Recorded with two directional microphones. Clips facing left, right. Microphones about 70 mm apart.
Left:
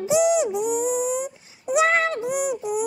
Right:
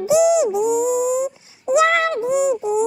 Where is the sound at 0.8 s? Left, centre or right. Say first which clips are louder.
Right 5 dB; centre.